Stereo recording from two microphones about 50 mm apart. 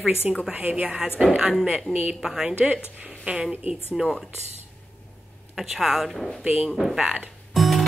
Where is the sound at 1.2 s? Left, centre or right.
Centre.